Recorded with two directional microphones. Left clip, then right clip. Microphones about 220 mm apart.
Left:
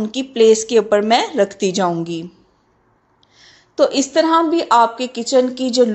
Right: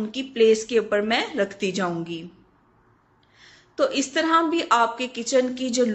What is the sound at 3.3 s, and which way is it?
A woman's voice, 20° left (ahead or behind).